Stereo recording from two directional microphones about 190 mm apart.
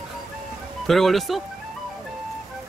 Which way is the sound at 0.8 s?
Centre (ahead or behind).